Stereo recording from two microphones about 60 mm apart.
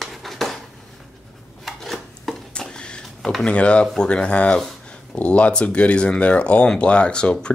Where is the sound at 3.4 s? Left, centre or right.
Centre.